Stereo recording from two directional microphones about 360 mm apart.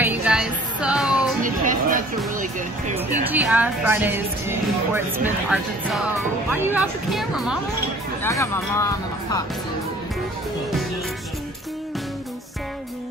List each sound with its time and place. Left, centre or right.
0.0 s music: centre
1.4 s a sound: right
3.3 s speech: centre